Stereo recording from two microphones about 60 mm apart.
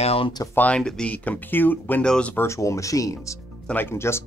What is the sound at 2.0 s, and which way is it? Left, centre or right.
Speech, centre.